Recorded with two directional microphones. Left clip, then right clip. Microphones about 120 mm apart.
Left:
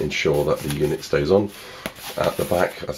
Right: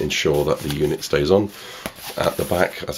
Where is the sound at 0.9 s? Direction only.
25° right (ahead or behind).